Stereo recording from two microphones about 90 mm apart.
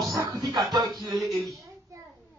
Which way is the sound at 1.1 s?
Centre (ahead or behind).